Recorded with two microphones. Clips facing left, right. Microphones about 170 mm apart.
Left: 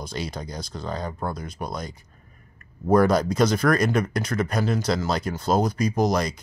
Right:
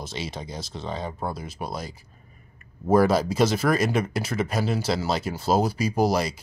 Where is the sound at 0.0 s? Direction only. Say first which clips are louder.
Left 2 dB; 5° right (ahead or behind).